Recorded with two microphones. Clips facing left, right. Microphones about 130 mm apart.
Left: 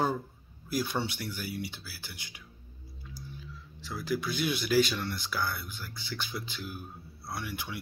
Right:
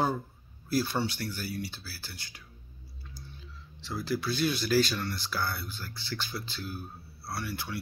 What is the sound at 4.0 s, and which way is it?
Speech, 15° left (ahead or behind).